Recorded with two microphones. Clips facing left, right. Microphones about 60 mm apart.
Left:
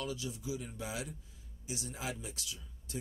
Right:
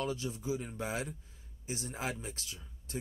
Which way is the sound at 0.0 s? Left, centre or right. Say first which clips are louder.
Right 4 dB; right.